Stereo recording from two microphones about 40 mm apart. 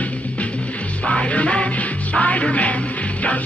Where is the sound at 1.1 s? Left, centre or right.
Left.